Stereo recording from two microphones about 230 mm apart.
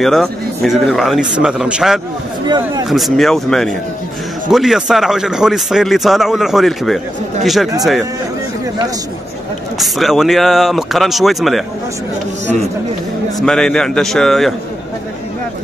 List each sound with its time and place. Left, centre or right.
0.0 s speech: centre
2.4 s speech: centre
2.9 s speech: centre
9.8 s speech: centre
13.4 s speech: centre